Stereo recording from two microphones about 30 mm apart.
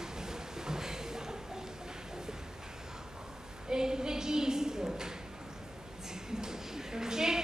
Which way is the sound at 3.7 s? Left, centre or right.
Right.